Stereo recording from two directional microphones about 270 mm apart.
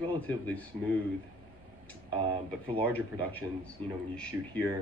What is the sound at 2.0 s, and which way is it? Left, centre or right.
Speech, centre.